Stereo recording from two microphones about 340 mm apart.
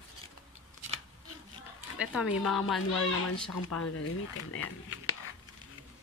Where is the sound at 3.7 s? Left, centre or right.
Left.